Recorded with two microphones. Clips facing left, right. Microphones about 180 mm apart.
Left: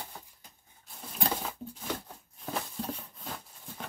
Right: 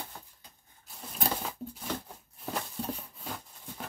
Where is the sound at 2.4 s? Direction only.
Centre (ahead or behind).